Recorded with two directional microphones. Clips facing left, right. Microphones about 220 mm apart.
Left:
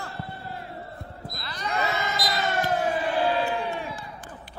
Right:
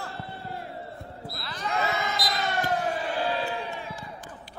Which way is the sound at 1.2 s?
Centre (ahead or behind).